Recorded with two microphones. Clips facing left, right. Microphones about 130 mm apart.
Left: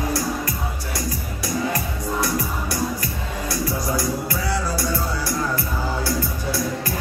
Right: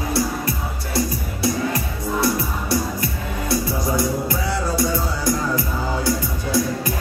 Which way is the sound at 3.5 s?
25° right (ahead or behind).